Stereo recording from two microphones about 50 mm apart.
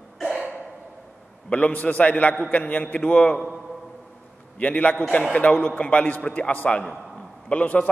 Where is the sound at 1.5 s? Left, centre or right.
Left.